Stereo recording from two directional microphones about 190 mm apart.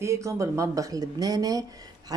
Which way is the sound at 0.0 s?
15° right (ahead or behind).